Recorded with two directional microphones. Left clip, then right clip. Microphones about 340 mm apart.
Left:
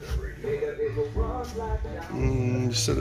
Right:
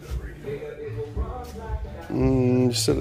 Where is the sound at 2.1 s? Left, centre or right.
Centre.